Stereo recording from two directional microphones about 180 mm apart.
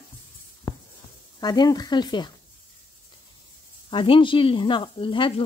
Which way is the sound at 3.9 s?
30° left (ahead or behind).